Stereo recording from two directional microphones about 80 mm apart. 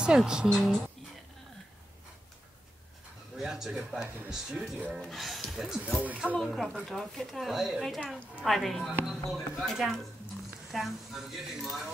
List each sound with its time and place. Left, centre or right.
0.0 s speech: centre
0.5 s speech: centre
3.3 s speech: centre
5.9 s speech: centre
6.4 s speech: centre